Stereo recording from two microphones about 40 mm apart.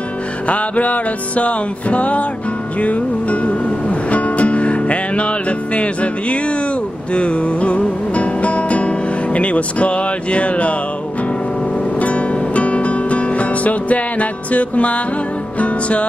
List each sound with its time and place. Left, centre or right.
0.5 s music: left
12.0 s music: left